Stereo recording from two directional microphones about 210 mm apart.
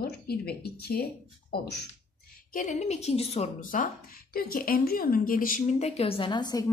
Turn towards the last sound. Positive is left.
turn(degrees=20)  # may be behind; listen again after turning